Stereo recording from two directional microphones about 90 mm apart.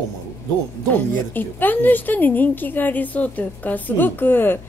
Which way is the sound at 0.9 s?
20° left (ahead or behind).